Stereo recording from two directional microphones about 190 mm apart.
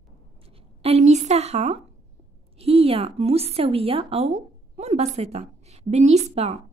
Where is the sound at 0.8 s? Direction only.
35° right (ahead or behind).